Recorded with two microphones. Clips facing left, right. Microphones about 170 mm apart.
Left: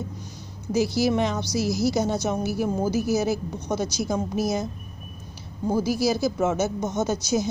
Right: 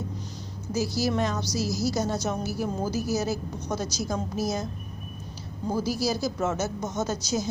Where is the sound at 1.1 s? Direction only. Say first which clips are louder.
Left 3 dB; 15° left (ahead or behind).